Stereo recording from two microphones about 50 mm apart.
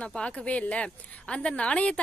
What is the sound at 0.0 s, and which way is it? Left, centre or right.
A woman's voice, left.